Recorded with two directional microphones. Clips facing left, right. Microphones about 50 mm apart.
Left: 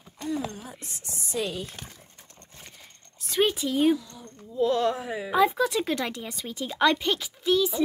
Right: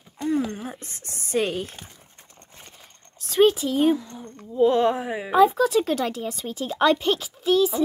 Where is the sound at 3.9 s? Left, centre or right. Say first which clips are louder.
Right 4 dB; right.